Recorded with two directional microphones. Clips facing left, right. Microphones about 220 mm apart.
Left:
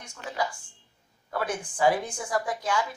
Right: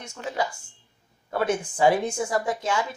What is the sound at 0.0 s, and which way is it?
A woman's voice, 25° right (ahead or behind).